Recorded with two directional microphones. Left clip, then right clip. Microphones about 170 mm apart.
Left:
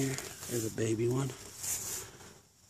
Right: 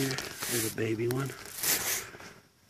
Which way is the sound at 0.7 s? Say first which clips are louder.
Right 1 dB; 15° left (ahead or behind).